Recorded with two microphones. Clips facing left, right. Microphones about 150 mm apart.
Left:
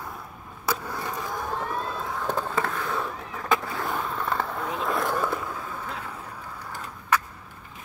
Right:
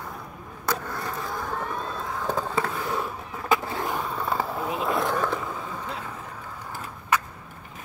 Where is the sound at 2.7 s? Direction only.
20° right (ahead or behind).